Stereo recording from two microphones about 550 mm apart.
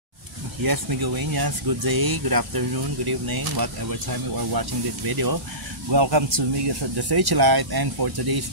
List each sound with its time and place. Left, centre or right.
0.7 s speech: right